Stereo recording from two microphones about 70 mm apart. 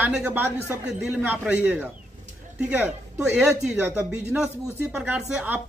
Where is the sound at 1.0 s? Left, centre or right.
Centre.